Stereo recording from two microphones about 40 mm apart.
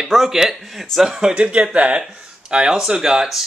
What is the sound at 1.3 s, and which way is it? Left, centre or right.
Speech, right.